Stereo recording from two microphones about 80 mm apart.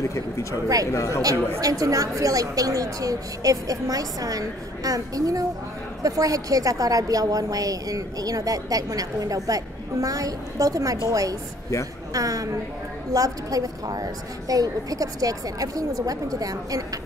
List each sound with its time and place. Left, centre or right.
0.1 s speech: left
1.2 s a woman's voice: right